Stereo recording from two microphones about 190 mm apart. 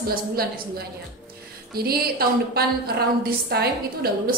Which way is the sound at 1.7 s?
55° right (ahead or behind).